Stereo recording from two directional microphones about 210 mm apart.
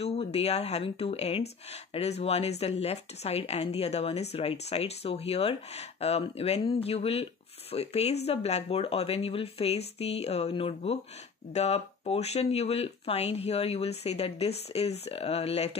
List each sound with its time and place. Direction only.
0.0 s speech: 30° left (ahead or behind)